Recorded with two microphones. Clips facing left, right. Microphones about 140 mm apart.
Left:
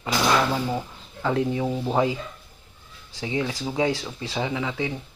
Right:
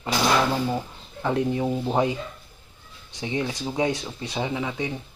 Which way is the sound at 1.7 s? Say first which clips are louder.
Right 1 dB; centre (ahead or behind).